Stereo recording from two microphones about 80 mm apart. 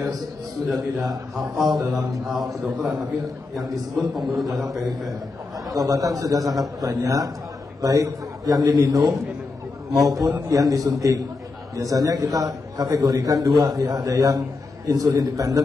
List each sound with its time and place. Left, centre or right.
0.7 s a man's voice: centre
1.9 s a man's voice: right
2.2 s a man's voice: centre
5.7 s a man's voice: right
10.5 s a man's voice: right